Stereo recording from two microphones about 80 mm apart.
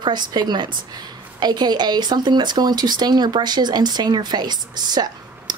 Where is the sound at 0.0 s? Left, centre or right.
Right.